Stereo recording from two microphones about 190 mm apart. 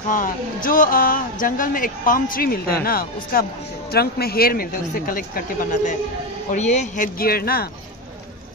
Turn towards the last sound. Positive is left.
turn(degrees=55)  # may be behind; listen again after turning